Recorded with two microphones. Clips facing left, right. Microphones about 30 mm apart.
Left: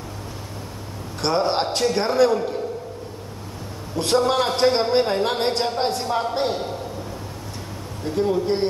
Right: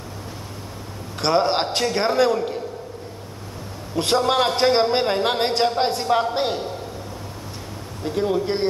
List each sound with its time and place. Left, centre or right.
1.2 s a man's voice: right
4.0 s a man's voice: right
8.2 s a man's voice: right